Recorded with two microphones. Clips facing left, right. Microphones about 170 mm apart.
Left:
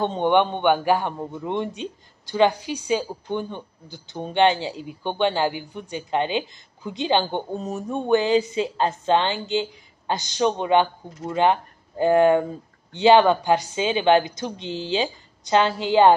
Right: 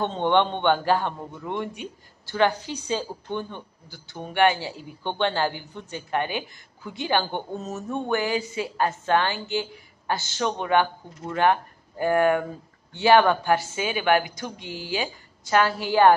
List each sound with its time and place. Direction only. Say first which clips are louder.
0.0 s a man's voice: left 2 dB; 15° left (ahead or behind)